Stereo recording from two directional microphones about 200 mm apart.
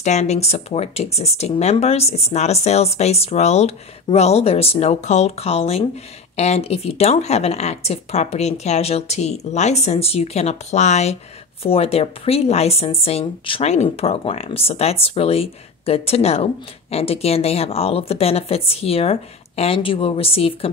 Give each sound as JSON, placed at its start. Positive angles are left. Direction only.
{"t": 0.0, "sound": "a woman's voice", "side_deg": 35}